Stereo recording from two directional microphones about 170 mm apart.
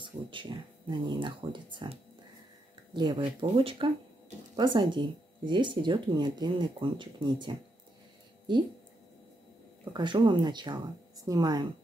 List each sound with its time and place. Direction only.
0.0 s speech: 30° right (ahead or behind)
9.9 s speech: 25° right (ahead or behind)